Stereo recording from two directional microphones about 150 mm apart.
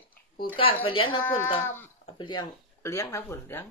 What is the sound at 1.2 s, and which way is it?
Speech, 15° left (ahead or behind).